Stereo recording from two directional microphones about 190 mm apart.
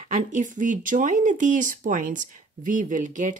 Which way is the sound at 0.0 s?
40° right (ahead or behind).